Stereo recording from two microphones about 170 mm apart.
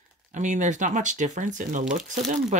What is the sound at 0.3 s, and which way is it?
Speech, 45° right (ahead or behind).